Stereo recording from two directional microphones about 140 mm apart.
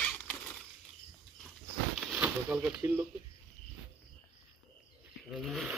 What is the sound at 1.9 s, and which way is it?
Speech, 10° right (ahead or behind).